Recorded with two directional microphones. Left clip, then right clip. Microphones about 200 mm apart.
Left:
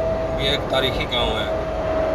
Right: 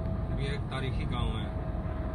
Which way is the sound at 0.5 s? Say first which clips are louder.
Left 18 dB; 20° right (ahead or behind).